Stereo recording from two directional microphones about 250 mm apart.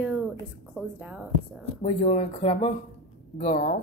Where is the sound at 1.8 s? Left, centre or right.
Left.